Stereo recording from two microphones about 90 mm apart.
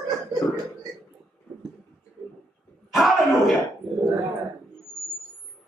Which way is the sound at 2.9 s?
Centre (ahead or behind).